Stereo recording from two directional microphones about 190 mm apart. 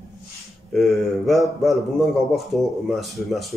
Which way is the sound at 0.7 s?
Centre (ahead or behind).